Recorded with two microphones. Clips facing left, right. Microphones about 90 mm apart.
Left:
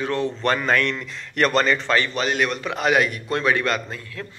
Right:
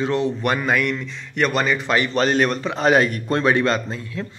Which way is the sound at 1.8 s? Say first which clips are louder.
Right 1 dB; 15° right (ahead or behind).